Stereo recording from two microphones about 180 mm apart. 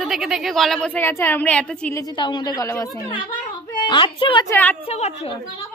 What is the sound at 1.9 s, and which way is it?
A woman's voice, 25° left (ahead or behind).